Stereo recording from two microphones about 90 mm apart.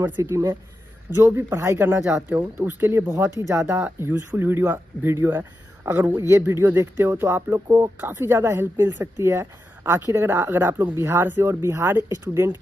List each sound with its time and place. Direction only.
0.2 s speech: 35° right (ahead or behind)
3.1 s speech: 35° right (ahead or behind)